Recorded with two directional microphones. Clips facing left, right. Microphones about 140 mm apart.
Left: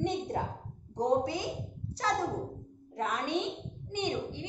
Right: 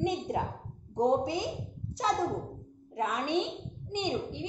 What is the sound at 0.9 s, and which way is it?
Speech, 20° right (ahead or behind).